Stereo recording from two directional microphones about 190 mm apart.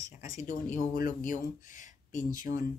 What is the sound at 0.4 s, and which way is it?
Speech, 40° left (ahead or behind).